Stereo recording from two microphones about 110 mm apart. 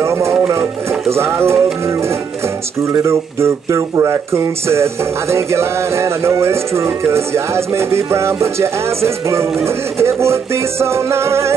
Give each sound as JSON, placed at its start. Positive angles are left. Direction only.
{"t": 0.0, "sound": "music", "side_deg": -25}
{"t": 1.1, "sound": "speech", "side_deg": -25}
{"t": 2.9, "sound": "speech", "side_deg": -25}